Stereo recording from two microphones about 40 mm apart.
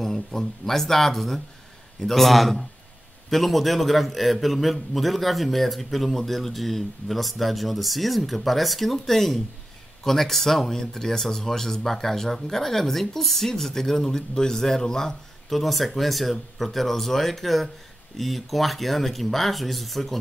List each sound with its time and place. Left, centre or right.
0.0 s a man's voice: centre
15.6 s a man's voice: centre